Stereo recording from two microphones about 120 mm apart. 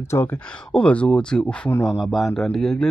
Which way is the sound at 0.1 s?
20° left (ahead or behind).